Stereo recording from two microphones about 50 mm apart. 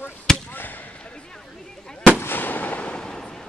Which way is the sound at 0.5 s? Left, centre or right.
Left.